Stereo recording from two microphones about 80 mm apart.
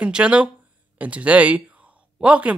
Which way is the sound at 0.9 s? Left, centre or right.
Centre.